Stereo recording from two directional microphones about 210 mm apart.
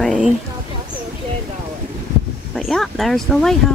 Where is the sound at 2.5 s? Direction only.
Centre (ahead or behind).